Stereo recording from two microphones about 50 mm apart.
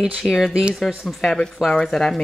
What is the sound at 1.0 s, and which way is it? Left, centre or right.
Speech, centre.